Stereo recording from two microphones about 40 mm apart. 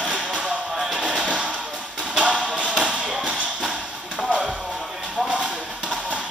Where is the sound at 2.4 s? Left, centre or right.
Right.